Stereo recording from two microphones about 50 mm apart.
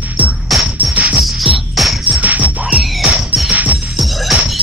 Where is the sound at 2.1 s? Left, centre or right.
Right.